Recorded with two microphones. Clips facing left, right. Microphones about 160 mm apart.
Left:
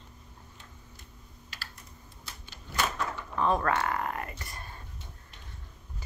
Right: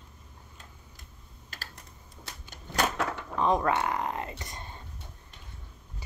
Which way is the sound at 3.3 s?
15° right (ahead or behind).